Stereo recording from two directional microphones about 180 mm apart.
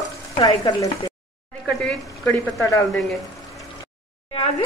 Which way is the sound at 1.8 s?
5° left (ahead or behind).